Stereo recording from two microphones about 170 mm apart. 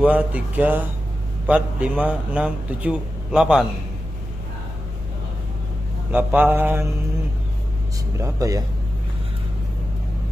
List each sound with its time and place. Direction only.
0.0 s a man's voice: 10° right (ahead or behind)
6.1 s a man's voice: 10° right (ahead or behind)
8.2 s speech: 20° right (ahead or behind)